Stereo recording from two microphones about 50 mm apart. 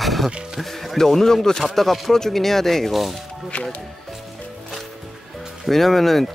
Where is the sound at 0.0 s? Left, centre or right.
Centre.